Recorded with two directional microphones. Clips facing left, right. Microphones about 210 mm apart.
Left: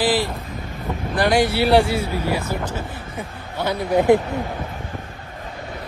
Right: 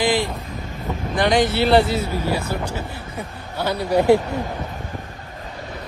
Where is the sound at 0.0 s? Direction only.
5° left (ahead or behind).